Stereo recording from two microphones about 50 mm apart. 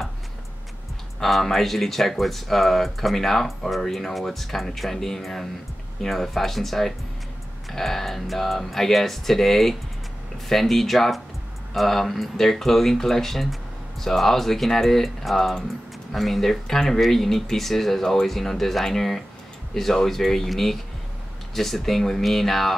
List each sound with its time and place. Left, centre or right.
1.2 s speech: centre